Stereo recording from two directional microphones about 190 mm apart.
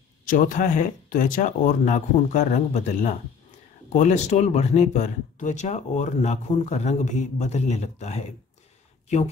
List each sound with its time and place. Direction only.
0.3 s speech: 45° left (ahead or behind)